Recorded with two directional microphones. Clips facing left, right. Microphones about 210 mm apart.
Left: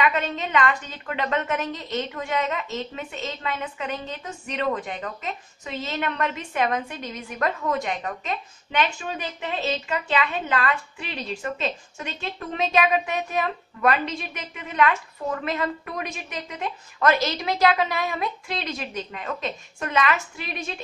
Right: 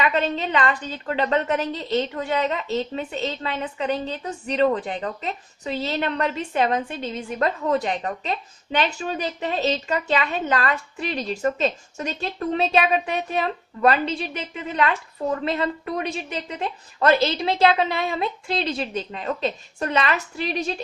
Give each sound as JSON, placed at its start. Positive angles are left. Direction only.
{"t": 0.0, "sound": "a woman's voice", "side_deg": -30}